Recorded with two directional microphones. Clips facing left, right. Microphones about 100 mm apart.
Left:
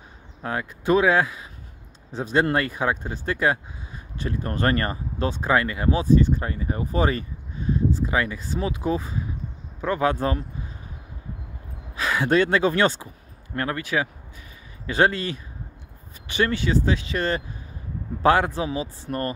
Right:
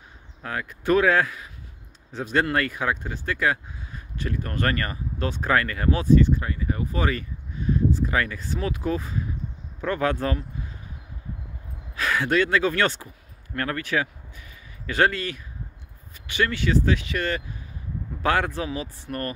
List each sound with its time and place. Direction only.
0.4 s speech: 25° left (ahead or behind)
6.4 s speech: 35° left (ahead or behind)
11.9 s speech: 20° left (ahead or behind)